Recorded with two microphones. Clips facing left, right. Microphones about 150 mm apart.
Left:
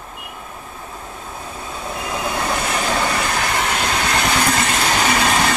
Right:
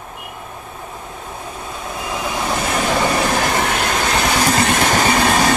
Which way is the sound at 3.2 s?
50° right (ahead or behind).